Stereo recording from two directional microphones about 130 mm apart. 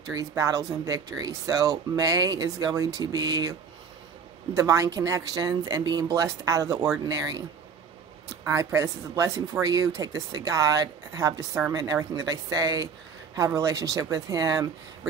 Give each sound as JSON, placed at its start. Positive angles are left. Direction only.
{"t": 0.4, "sound": "speech", "side_deg": -25}
{"t": 4.6, "sound": "speech", "side_deg": -25}